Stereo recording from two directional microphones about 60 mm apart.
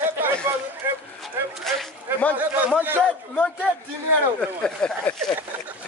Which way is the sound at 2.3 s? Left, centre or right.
Right.